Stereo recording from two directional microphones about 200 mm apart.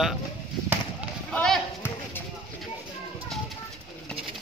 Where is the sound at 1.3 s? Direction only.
5° left (ahead or behind).